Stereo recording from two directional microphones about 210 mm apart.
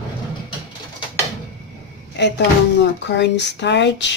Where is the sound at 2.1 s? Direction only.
55° left (ahead or behind).